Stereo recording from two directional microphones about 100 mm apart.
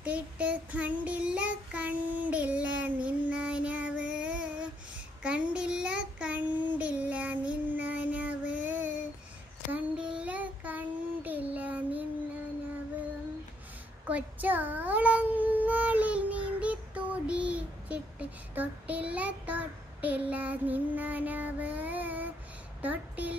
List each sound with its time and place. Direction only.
0.0 s child singing: 15° right (ahead or behind)
14.0 s child singing: 15° right (ahead or behind)
22.8 s a sound: 15° right (ahead or behind)